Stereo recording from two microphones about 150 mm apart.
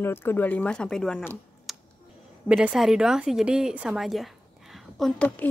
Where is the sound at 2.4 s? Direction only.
5° right (ahead or behind).